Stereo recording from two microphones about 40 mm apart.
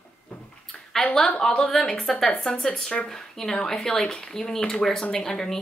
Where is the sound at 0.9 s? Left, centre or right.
Centre.